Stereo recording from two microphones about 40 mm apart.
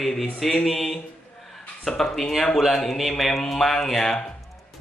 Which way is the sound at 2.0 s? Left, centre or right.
Centre.